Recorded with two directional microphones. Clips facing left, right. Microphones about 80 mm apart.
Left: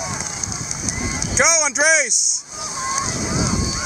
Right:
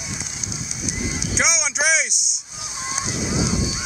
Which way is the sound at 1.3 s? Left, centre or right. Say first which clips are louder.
Left 6 dB; left.